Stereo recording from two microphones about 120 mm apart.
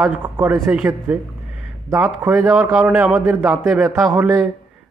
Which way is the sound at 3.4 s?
20° right (ahead or behind).